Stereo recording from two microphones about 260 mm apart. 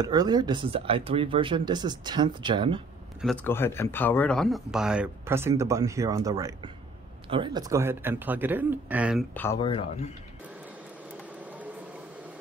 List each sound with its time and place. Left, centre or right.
0.0 s speech: centre
3.2 s a man's voice: centre
9.3 s speech: centre
9.6 s speech: left